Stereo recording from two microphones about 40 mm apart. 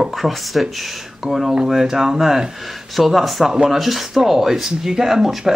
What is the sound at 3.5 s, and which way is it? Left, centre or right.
Speech, centre.